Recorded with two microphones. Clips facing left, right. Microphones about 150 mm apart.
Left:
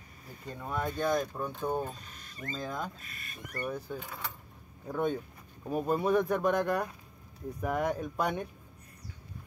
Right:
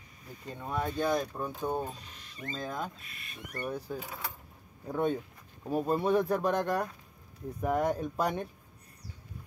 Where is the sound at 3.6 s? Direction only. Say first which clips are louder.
Even; 5° right (ahead or behind).